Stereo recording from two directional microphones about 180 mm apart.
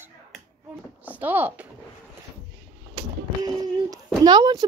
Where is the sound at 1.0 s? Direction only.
10° right (ahead or behind).